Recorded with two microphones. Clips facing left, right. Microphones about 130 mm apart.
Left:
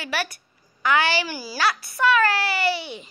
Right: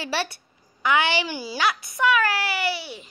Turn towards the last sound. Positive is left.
turn(degrees=-5)  # may be behind; listen again after turning